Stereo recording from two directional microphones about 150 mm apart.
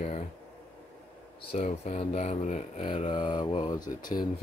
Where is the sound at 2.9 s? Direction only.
35° left (ahead or behind).